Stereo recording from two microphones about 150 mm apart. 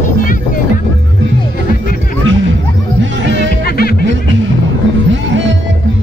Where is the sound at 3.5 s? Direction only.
90° left.